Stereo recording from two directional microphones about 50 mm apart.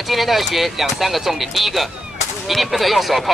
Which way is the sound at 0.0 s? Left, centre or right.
Centre.